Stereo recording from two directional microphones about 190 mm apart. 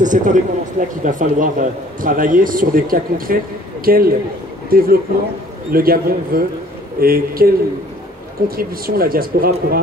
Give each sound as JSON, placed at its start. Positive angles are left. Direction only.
{"t": 0.0, "sound": "a man's voice", "side_deg": -40}